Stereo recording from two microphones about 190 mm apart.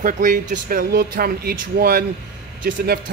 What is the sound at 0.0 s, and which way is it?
Speech, 45° right (ahead or behind).